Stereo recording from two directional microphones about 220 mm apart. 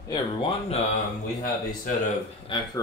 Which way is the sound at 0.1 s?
25° left (ahead or behind).